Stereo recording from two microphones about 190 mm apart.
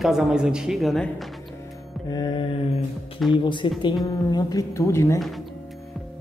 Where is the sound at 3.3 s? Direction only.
25° left (ahead or behind).